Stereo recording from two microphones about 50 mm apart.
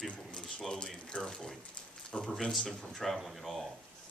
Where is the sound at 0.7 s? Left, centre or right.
Centre.